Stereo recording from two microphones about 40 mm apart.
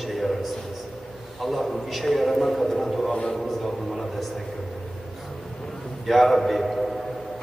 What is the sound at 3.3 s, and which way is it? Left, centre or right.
Speech, centre.